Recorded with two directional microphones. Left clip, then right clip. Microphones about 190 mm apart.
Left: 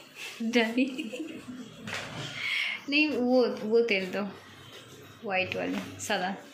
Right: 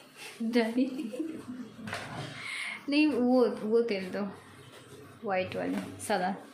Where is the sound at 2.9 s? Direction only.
15° right (ahead or behind).